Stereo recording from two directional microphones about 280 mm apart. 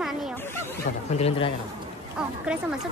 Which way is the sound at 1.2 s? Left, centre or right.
Left.